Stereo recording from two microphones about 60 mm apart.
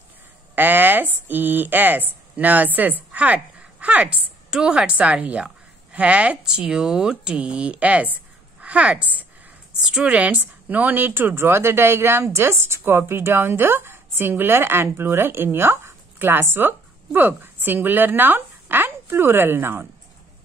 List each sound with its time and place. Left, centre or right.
0.6 s speech: right
6.4 s speech: centre
7.3 s a woman's voice: right
9.7 s speech: centre; by 19.9 s right